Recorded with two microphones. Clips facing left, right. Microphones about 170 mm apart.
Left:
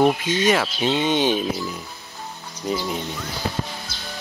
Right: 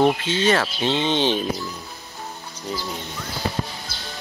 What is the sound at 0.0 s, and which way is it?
Speech, 10° left (ahead or behind).